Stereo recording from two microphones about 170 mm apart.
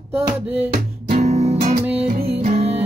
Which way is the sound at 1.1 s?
40° right (ahead or behind).